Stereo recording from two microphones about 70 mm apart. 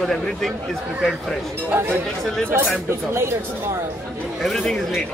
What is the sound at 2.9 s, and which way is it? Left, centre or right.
Speech, right.